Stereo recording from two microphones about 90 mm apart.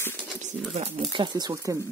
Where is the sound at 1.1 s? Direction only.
50° right (ahead or behind).